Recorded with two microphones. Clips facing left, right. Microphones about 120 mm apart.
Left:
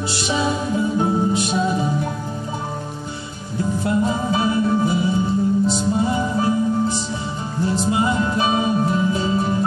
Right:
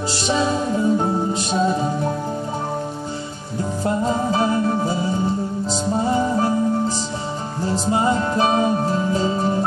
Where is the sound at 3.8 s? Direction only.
40° right (ahead or behind).